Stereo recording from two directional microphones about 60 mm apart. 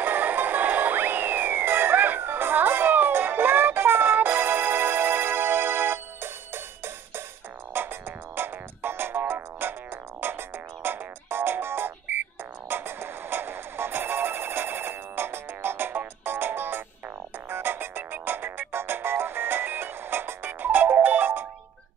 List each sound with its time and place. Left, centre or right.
0.0 s music: right